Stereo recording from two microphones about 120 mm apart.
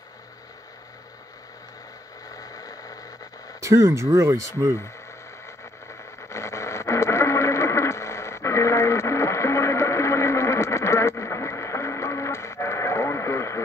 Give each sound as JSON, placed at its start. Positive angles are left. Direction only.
{"t": 2.3, "sound": "a sound", "side_deg": 30}
{"t": 3.6, "sound": "speech", "side_deg": -25}
{"t": 6.2, "sound": "radio", "side_deg": 25}